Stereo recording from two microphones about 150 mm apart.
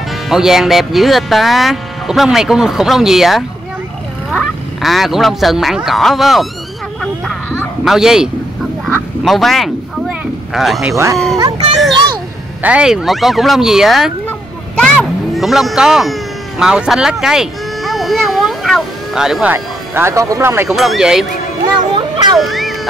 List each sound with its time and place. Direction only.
0.1 s speech: centre (ahead or behind)
7.8 s speech: 5° right (ahead or behind)
8.8 s quack: 5° left (ahead or behind)
11.3 s a child's voice: 25° right (ahead or behind)
12.6 s speech: 5° right (ahead or behind)
19.5 s speech: 15° right (ahead or behind)
20.7 s speech: centre (ahead or behind)
21.7 s speech: 30° right (ahead or behind)
22.4 s speech: centre (ahead or behind)